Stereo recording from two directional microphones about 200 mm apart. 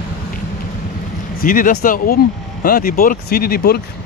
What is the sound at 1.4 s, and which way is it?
Speech, 45° left (ahead or behind).